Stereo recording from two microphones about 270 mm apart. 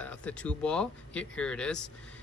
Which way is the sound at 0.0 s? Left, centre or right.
Centre.